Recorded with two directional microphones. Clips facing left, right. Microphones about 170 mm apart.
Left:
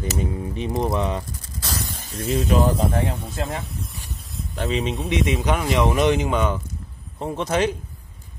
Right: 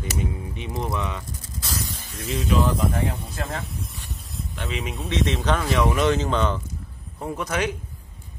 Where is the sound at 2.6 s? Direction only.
30° left (ahead or behind).